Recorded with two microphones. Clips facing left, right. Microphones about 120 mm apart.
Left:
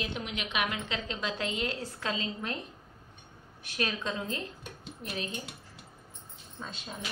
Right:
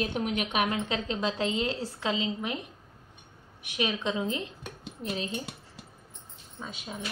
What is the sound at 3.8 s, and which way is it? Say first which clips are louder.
Speech: right 4 dB; 15° right (ahead or behind).